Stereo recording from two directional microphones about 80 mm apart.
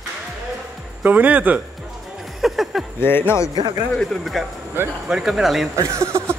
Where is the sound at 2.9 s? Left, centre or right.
Left.